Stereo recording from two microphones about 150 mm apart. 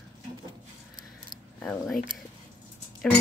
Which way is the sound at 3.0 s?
5° left (ahead or behind).